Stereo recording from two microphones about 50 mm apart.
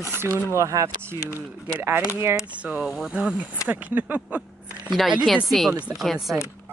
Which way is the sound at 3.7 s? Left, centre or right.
Right.